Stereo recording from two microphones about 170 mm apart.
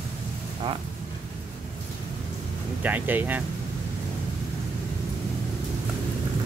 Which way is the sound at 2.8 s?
10° right (ahead or behind).